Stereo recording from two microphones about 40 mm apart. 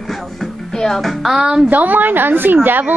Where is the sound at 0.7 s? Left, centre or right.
Centre.